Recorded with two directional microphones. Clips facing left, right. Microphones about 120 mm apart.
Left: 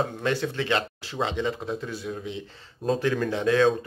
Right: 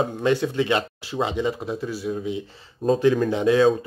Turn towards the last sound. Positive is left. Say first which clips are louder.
# right 4 dB
turn(degrees=-15)  # may be behind; listen again after turning